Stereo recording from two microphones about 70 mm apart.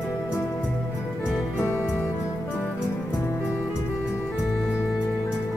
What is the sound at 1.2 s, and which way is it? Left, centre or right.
Music, left.